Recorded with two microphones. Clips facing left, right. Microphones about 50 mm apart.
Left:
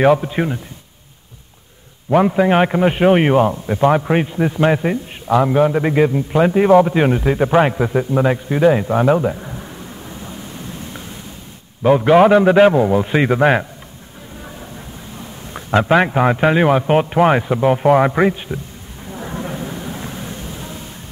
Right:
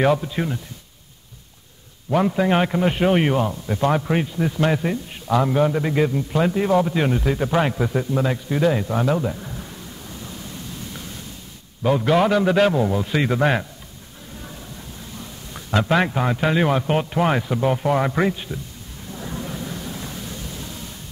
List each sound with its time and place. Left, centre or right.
0.0 s a man's voice: left
2.0 s a man's voice: left
15.1 s a man's voice: left
19.0 s thunder: left